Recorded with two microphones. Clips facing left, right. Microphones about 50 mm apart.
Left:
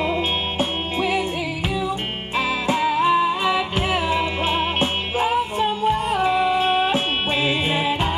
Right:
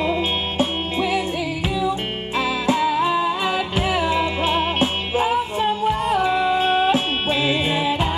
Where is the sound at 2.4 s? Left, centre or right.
Centre.